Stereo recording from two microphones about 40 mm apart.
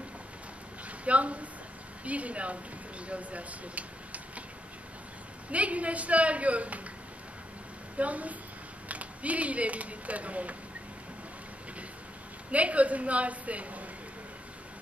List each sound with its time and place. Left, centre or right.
0.8 s a woman's voice: right
5.5 s a woman's voice: right
8.0 s a woman's voice: right
12.4 s a woman's voice: right